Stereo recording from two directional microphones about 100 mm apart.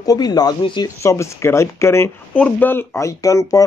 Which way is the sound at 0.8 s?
30° left (ahead or behind).